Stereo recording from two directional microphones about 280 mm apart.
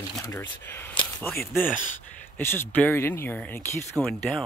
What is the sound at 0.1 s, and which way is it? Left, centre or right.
Speech, centre.